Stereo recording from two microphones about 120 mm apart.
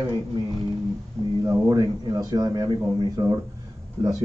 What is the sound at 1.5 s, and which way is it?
Speech, 30° right (ahead or behind).